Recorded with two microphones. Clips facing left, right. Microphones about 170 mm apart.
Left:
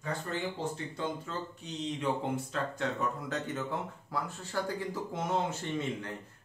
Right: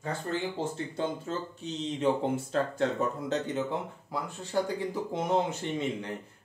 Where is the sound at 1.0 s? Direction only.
25° right (ahead or behind).